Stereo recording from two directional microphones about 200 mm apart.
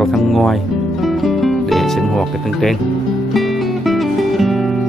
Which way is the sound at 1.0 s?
Centre (ahead or behind).